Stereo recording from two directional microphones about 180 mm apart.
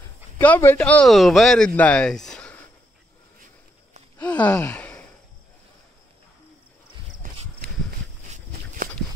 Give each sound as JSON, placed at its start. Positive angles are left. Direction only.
{"t": 0.4, "sound": "speech", "side_deg": 10}
{"t": 1.8, "sound": "a sound", "side_deg": 5}
{"t": 4.2, "sound": "gasp", "side_deg": 10}
{"t": 7.6, "sound": "walk", "side_deg": -60}